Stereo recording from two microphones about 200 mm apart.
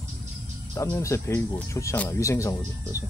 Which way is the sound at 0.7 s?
15° left (ahead or behind).